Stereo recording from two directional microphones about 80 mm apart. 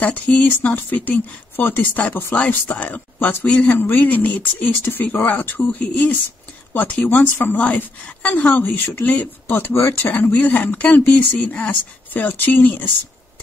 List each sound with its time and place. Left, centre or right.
0.0 s speech: centre